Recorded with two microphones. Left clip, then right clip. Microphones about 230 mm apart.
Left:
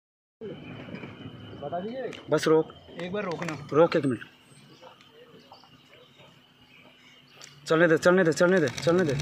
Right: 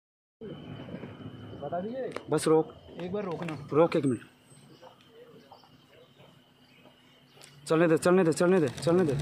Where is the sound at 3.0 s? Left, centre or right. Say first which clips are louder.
Left 3 dB; centre.